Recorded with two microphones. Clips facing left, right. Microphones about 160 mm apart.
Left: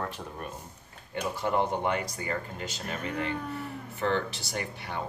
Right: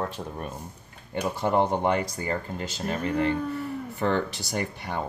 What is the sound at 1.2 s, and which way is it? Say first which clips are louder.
Speech: right 4 dB; 40° right (ahead or behind).